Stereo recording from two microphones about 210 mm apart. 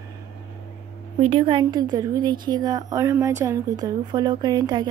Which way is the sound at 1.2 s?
25° right (ahead or behind).